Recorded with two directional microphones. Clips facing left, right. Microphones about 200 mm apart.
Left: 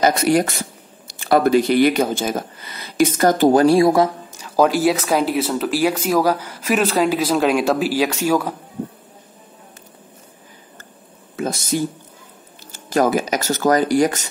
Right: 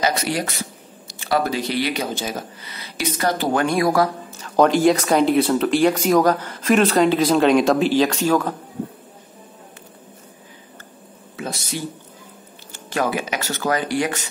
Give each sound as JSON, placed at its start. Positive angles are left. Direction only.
{"t": 0.0, "sound": "speech", "side_deg": 50}
{"t": 4.4, "sound": "speech", "side_deg": 5}
{"t": 11.3, "sound": "a sound", "side_deg": 45}
{"t": 12.7, "sound": "speech", "side_deg": 40}